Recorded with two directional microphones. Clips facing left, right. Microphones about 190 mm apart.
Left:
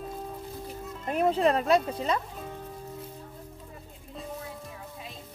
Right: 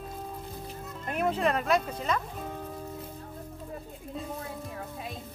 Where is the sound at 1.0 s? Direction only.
35° left (ahead or behind).